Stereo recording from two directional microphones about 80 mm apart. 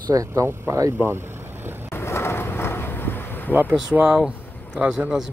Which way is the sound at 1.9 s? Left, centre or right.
Left.